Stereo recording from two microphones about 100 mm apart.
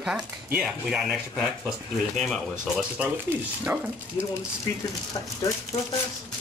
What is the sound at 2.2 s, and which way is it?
Speech, centre (ahead or behind).